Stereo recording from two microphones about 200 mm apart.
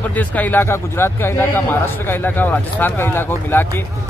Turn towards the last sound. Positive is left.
turn(degrees=10)  # may be behind; listen again after turning